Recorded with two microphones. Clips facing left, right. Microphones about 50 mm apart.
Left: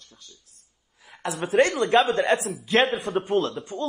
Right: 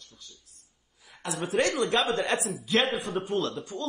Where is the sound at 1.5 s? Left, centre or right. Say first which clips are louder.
Left 6 dB; left.